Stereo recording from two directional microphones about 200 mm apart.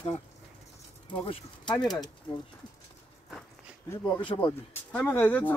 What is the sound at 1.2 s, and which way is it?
Speech, 30° left (ahead or behind).